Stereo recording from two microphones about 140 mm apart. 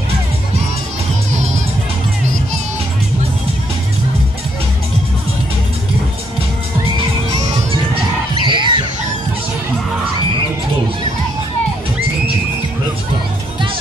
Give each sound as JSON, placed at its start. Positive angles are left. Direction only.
{"t": 1.3, "sound": "music", "side_deg": -55}
{"t": 8.4, "sound": "music", "side_deg": -35}